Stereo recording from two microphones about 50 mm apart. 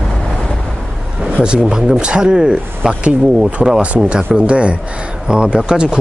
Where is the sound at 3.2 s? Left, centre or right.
Centre.